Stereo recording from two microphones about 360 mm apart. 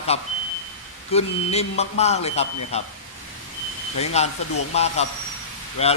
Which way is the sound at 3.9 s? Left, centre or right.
Centre.